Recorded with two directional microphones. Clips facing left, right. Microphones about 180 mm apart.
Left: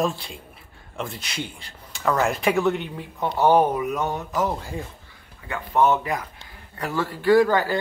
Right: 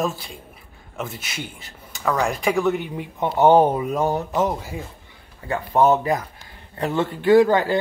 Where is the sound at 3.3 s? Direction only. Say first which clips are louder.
Right 3 dB; 25° right (ahead or behind).